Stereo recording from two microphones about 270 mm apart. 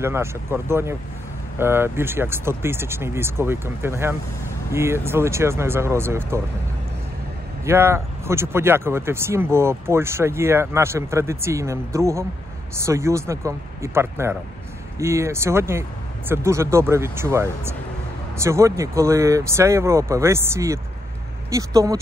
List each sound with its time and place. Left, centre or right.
0.0 s speech: centre
7.6 s speech: centre